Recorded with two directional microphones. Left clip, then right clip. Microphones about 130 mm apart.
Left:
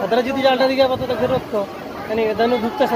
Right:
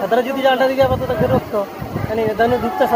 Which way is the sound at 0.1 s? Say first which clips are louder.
Right 1 dB; 20° left (ahead or behind).